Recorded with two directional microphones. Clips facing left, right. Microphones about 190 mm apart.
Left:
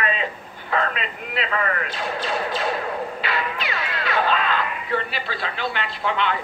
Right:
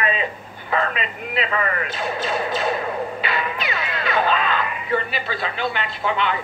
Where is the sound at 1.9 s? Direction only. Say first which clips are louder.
Right 2 dB; centre (ahead or behind).